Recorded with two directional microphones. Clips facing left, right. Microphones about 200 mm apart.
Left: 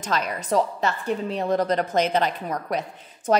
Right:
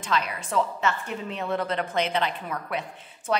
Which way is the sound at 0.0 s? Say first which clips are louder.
Left 2 dB; 45° left (ahead or behind).